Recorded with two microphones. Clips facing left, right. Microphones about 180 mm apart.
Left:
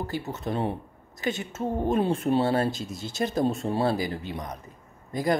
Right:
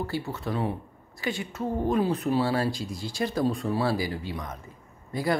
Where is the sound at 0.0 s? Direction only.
20° left (ahead or behind).